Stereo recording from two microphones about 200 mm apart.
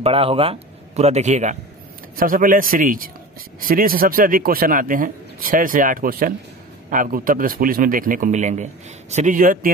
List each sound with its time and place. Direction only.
0.0 s a man's voice: 30° right (ahead or behind)